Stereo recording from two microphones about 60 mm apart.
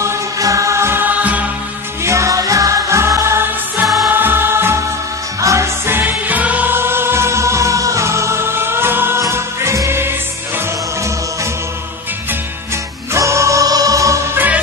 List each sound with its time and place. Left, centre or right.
0.0 s music: right
1.0 s music: right
2.0 s music: right
3.8 s music: centre
4.1 s music: right
5.4 s music: right
5.9 s music: right
6.7 s music: right
9.3 s music: right
13.1 s music: right
14.3 s music: right